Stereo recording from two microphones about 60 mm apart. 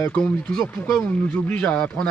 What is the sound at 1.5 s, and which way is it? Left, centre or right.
Speech, left.